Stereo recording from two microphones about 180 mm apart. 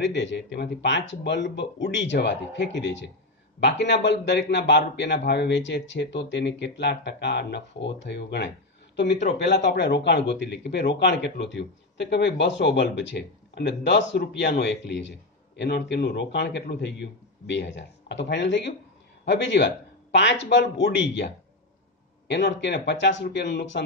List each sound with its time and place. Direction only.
0.0 s a man's voice: 80° left
22.3 s a man's voice: 75° left (ahead or behind)